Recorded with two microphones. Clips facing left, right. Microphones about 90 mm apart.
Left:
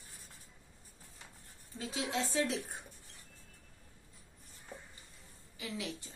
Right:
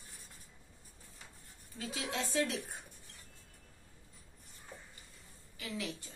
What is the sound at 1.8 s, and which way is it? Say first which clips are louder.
Speech: left 2 dB; 25° left (ahead or behind).